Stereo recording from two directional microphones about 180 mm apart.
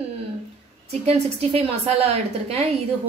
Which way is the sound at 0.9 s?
35° right (ahead or behind).